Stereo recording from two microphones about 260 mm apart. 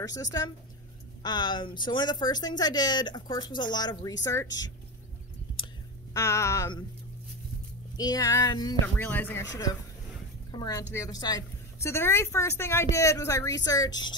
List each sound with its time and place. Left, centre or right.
0.0 s a woman's voice: centre
6.1 s a woman's voice: centre
8.0 s a woman's voice: centre
10.5 s a woman's voice: centre